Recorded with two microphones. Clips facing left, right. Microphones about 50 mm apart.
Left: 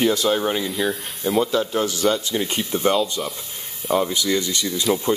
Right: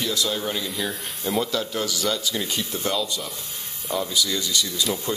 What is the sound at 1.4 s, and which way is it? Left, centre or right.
Speech, left.